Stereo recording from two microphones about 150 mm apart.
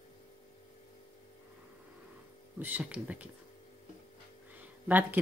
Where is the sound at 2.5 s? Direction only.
10° right (ahead or behind).